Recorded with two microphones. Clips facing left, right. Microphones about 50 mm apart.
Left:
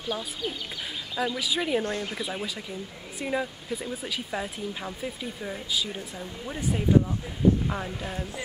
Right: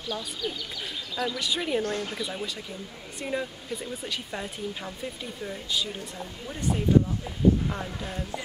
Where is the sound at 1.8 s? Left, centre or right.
Centre.